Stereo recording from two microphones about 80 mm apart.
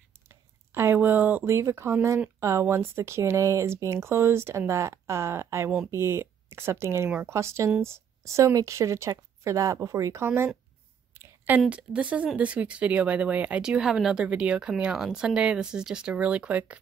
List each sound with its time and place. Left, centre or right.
0.3 s a sound: right
1.5 s speech: right
10.2 s speech: right
11.7 s speech: centre